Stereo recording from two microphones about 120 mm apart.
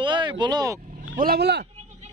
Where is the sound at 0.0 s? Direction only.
40° right (ahead or behind).